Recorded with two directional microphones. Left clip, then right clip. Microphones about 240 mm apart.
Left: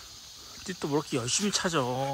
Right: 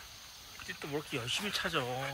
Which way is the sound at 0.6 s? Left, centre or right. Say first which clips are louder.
Left 9 dB; left.